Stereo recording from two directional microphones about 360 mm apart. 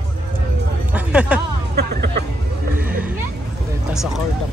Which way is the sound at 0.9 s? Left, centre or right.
Centre.